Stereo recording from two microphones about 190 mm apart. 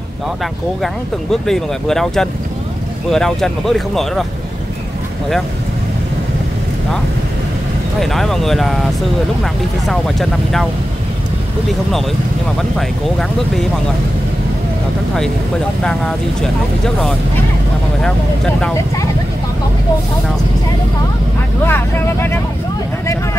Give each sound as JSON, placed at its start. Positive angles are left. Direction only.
{"t": 1.3, "sound": "speech", "side_deg": 0}
{"t": 8.0, "sound": "speech", "side_deg": 0}
{"t": 12.7, "sound": "speech", "side_deg": 0}
{"t": 15.8, "sound": "speech", "side_deg": 5}
{"t": 21.6, "sound": "speech", "side_deg": 10}